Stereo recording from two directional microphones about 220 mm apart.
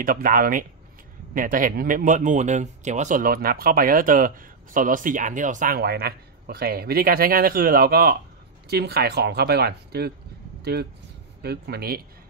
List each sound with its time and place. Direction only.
0.0 s speech: 40° right (ahead or behind)